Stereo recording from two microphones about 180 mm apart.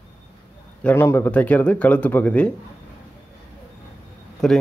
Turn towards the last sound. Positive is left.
turn(degrees=0)  # may be behind; listen again after turning